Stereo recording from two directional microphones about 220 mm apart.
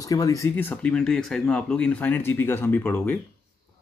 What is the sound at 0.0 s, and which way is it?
Speech, 15° left (ahead or behind).